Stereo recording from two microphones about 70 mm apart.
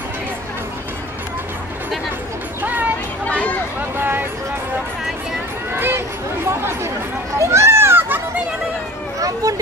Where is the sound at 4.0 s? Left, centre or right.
Right.